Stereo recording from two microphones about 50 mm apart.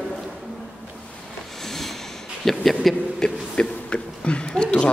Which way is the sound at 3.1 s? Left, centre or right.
Centre.